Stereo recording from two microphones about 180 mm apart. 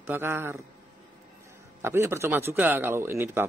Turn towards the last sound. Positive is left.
turn(degrees=-15)  # may be behind; listen again after turning